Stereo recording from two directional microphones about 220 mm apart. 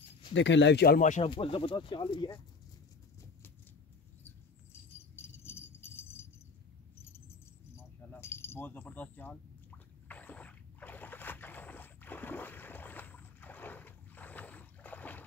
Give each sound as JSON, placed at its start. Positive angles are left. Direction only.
{"t": 0.3, "sound": "speech", "side_deg": 55}
{"t": 1.3, "sound": "speech", "side_deg": 25}
{"t": 5.1, "sound": "keys jangling", "side_deg": 10}
{"t": 7.7, "sound": "keys jangling", "side_deg": 10}